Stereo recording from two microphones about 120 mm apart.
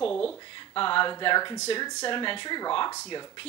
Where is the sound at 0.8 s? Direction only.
45° left (ahead or behind).